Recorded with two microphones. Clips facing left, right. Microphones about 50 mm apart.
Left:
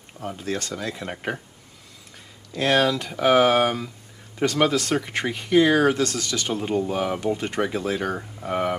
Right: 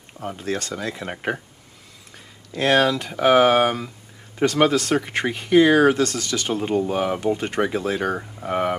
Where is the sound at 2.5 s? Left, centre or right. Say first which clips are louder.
Right 2 dB; centre.